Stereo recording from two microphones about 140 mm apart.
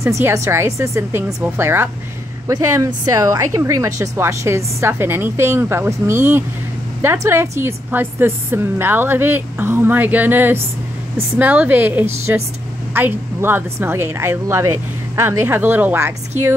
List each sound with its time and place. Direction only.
0.0 s a woman's voice: 20° right (ahead or behind)